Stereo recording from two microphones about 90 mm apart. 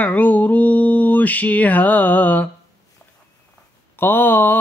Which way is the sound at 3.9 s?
25° left (ahead or behind).